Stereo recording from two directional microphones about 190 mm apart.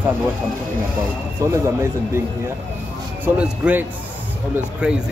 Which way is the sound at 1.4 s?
20° right (ahead or behind).